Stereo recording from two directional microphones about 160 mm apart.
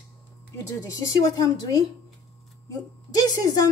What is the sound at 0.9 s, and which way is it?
Speech, 20° left (ahead or behind).